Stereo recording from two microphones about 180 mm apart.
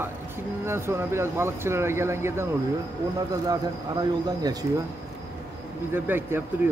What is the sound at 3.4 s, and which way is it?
Speech, 20° right (ahead or behind).